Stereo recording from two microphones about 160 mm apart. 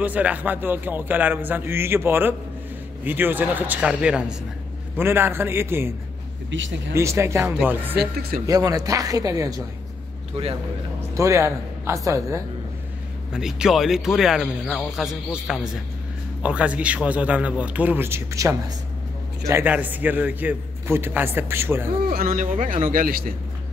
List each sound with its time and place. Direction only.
0.0 s a man's voice: 10° right (ahead or behind)
8.0 s speech: 75° right (ahead or behind)
8.5 s speech: 20° right (ahead or behind)
11.1 s speech: 20° right (ahead or behind)
13.3 s a man's voice: 5° right (ahead or behind)
22.1 s speech: 60° right (ahead or behind)